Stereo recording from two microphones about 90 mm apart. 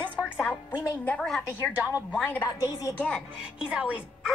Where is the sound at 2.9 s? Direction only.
15° left (ahead or behind).